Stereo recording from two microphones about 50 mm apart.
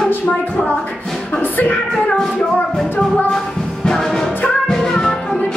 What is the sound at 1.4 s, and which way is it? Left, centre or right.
Music, left.